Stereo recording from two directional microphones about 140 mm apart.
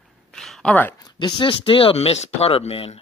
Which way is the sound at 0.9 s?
30° left (ahead or behind).